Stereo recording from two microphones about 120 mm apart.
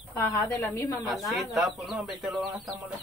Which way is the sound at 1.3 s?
Centre (ahead or behind).